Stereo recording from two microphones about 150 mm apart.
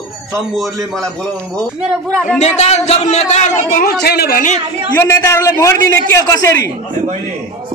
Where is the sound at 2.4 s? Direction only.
50° left (ahead or behind).